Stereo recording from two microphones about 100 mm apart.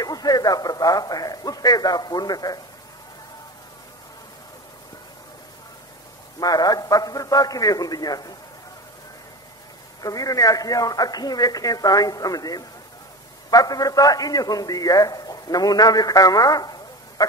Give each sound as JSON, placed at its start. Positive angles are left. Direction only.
{"t": 0.0, "sound": "a man's voice", "side_deg": 40}
{"t": 6.4, "sound": "a man's voice", "side_deg": 40}
{"t": 10.0, "sound": "a man's voice", "side_deg": 35}